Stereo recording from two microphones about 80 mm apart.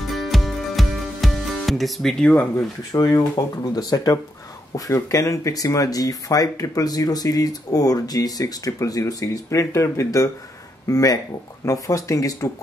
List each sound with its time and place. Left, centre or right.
0.0 s music: centre
2.9 s speech: left